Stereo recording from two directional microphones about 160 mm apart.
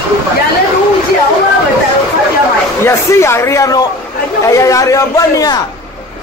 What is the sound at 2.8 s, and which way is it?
Speech, 15° left (ahead or behind).